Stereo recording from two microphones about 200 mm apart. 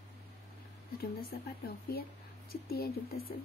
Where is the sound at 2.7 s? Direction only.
50° left (ahead or behind).